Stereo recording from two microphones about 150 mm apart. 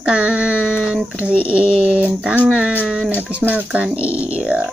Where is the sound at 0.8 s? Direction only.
10° right (ahead or behind).